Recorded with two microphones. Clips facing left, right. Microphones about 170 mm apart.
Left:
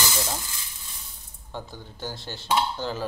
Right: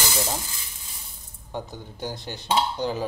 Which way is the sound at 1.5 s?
20° right (ahead or behind).